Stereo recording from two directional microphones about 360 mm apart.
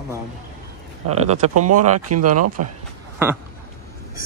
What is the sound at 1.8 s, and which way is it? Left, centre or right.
Speech, right.